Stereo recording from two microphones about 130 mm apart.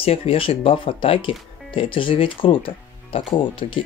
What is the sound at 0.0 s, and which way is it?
Speech, 50° left (ahead or behind).